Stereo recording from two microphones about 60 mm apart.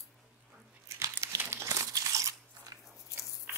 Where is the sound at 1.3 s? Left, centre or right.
Right.